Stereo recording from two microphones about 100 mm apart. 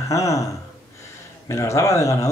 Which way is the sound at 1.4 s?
30° left (ahead or behind).